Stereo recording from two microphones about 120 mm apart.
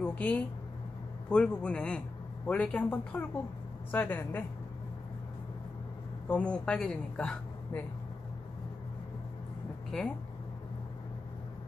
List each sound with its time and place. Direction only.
0.0 s a man's voice: 10° left (ahead or behind)
6.2 s a woman's voice: 10° left (ahead or behind)
9.9 s a man's voice: 5° left (ahead or behind)